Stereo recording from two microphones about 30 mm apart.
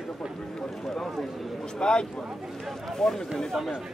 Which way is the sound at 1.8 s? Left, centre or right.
Left.